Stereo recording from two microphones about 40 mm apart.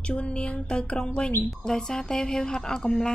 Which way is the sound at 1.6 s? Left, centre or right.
Centre.